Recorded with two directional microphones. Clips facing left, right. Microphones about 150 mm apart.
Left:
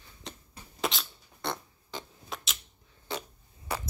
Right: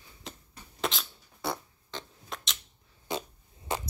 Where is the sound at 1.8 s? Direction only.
5° left (ahead or behind).